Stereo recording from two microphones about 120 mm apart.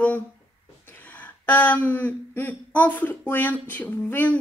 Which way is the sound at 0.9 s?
15° left (ahead or behind).